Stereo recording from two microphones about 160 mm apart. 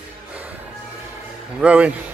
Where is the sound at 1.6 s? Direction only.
10° right (ahead or behind).